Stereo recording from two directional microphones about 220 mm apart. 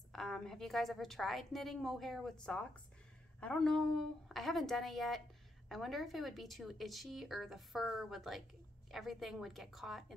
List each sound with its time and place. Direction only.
0.1 s a woman's voice: centre (ahead or behind)